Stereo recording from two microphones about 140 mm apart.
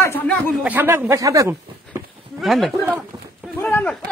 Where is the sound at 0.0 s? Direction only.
15° left (ahead or behind).